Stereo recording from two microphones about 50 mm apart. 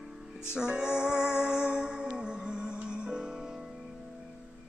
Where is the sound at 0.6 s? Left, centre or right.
Centre.